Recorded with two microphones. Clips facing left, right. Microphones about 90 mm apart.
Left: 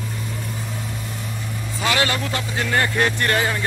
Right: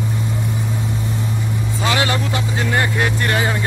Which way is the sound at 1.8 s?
20° right (ahead or behind).